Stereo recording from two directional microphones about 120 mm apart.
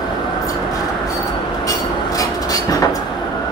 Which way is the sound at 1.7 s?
30° left (ahead or behind).